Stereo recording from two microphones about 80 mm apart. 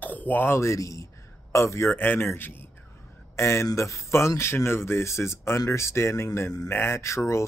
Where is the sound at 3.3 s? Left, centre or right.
Left.